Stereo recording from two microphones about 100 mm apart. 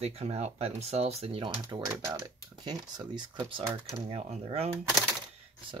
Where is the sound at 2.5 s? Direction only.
45° right (ahead or behind).